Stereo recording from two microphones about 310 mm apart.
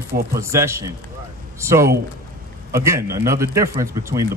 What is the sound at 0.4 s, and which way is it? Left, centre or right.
Speech, centre.